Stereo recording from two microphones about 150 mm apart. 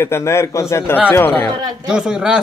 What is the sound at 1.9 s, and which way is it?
Speech, 5° right (ahead or behind).